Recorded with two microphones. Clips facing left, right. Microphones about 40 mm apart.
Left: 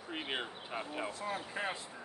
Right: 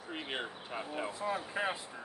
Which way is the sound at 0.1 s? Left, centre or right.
Centre.